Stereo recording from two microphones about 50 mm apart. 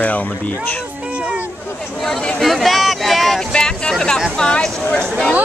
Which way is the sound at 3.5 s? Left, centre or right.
Centre.